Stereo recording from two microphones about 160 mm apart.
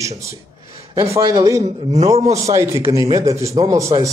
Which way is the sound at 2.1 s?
45° right (ahead or behind).